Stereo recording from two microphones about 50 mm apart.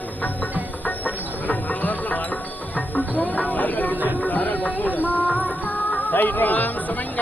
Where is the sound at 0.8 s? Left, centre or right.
Left.